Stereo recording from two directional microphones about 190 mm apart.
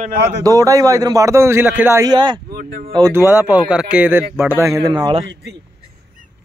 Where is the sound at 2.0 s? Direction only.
25° right (ahead or behind).